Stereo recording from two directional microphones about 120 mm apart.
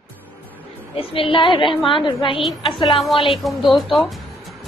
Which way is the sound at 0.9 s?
50° left (ahead or behind).